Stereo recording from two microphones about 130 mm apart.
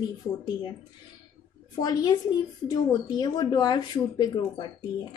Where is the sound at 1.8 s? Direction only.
30° left (ahead or behind).